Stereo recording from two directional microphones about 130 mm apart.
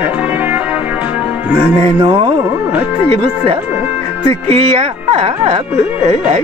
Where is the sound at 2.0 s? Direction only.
45° right (ahead or behind).